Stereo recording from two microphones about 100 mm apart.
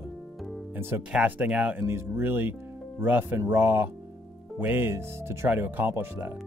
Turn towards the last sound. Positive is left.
turn(degrees=-20)  # may be behind; listen again after turning